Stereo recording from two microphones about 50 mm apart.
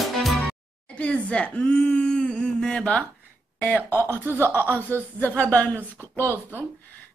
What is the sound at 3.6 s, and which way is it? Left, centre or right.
Speech, left.